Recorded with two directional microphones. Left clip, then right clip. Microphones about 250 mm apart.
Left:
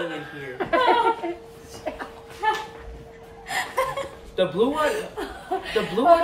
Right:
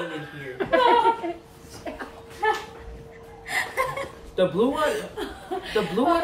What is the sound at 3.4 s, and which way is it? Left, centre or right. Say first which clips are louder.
Chuckle: left 1 dB; centre.